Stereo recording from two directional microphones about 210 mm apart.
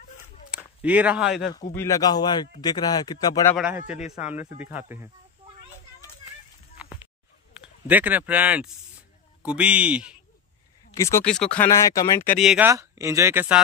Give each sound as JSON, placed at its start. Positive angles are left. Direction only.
{"t": 0.5, "sound": "a sound", "side_deg": -5}
{"t": 0.8, "sound": "a man's voice", "side_deg": -5}
{"t": 1.8, "sound": "a man's voice", "side_deg": 15}
{"t": 3.5, "sound": "a man's voice", "side_deg": -5}
{"t": 7.6, "sound": "a man's voice", "side_deg": -10}
{"t": 11.0, "sound": "speech", "side_deg": 15}
{"t": 11.2, "sound": "speech", "side_deg": 5}
{"t": 12.4, "sound": "speech", "side_deg": -5}